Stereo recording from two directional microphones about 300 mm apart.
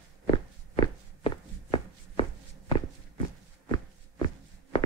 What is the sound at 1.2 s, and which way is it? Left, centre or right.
Walk, centre.